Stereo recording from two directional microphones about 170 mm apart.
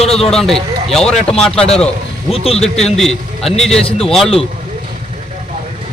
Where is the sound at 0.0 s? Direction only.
35° left (ahead or behind).